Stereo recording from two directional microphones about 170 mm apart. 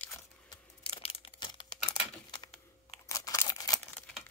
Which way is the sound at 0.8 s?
35° left (ahead or behind).